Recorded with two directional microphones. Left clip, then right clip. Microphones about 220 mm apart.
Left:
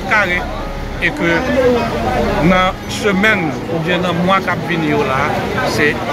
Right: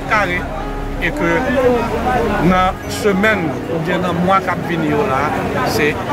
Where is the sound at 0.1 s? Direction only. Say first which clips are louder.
Left 2 dB; 5° right (ahead or behind).